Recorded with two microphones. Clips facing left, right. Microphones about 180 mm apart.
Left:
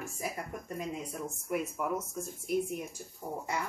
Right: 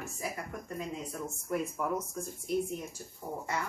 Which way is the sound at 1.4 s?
5° left (ahead or behind).